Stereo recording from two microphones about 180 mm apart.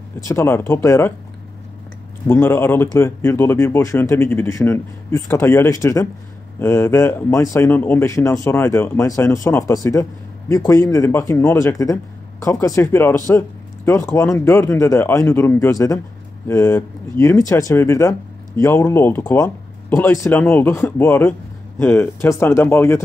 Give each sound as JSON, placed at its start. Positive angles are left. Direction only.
{"t": 0.3, "sound": "speech", "side_deg": 15}
{"t": 2.2, "sound": "speech", "side_deg": 10}